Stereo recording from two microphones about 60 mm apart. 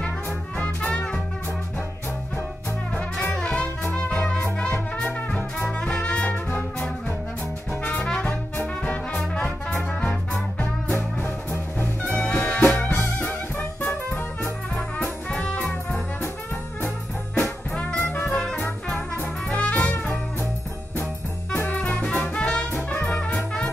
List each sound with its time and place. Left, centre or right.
0.6 s music: centre
3.3 s music: centre
5.8 s music: centre
8.0 s music: centre
12.4 s music: centre; by 14.5 s left
15.0 s music: left
17.4 s music: left
18.3 s music: centre
19.5 s music: left
21.5 s music: left